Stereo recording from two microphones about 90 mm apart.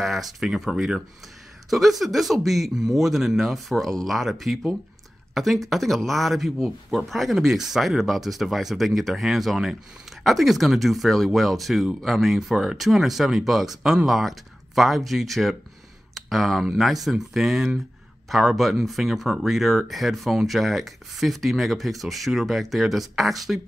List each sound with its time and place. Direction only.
0.0 s speech: centre (ahead or behind)